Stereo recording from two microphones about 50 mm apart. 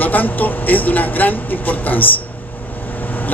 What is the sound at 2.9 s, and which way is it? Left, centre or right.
Vehicle, left.